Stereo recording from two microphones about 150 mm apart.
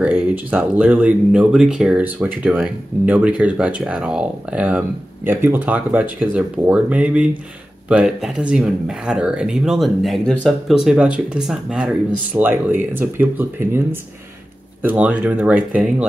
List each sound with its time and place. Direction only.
0.0 s speech: 10° right (ahead or behind)